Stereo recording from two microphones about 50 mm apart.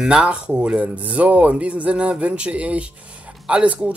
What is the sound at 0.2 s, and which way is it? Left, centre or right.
Speech, right.